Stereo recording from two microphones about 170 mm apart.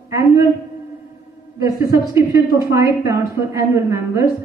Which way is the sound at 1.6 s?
20° right (ahead or behind).